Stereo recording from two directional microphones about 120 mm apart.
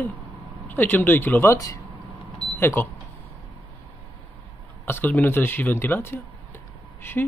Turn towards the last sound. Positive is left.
turn(degrees=15)  # may be behind; listen again after turning